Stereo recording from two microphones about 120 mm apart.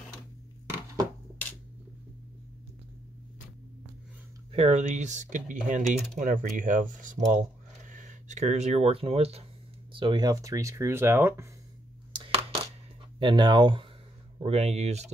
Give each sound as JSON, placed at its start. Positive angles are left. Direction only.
{"t": 4.5, "sound": "speech", "side_deg": -65}
{"t": 9.9, "sound": "speech", "side_deg": -40}
{"t": 12.1, "sound": "a sound", "side_deg": -45}
{"t": 13.2, "sound": "speech", "side_deg": -40}
{"t": 14.4, "sound": "speech", "side_deg": -65}